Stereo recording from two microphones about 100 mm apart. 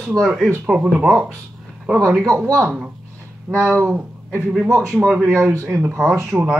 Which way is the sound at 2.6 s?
15° right (ahead or behind).